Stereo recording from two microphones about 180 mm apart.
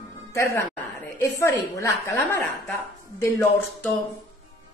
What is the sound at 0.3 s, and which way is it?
A woman's voice, 15° left (ahead or behind).